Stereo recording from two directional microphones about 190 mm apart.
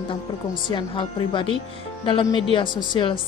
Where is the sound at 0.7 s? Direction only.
25° left (ahead or behind).